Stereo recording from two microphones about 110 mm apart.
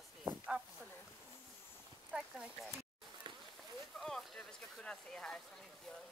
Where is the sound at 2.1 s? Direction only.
Centre (ahead or behind).